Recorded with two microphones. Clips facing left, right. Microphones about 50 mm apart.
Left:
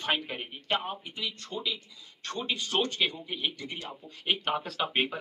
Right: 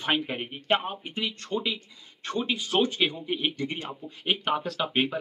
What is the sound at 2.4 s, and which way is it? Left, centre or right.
Speech, centre.